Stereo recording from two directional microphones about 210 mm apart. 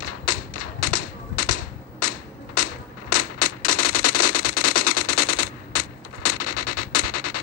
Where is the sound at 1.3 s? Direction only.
90° left.